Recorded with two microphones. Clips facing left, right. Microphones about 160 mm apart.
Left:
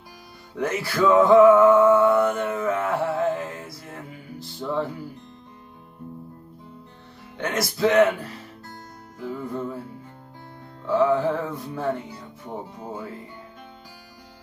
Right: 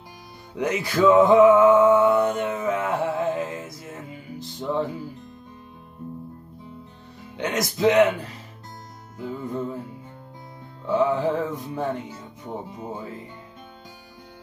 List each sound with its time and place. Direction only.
0.6 s music: 15° right (ahead or behind)
7.3 s speech: 20° right (ahead or behind)
9.2 s music: 20° right (ahead or behind)
10.9 s speech: 20° right (ahead or behind)